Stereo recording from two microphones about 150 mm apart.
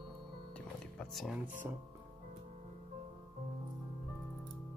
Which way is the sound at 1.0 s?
Centre (ahead or behind).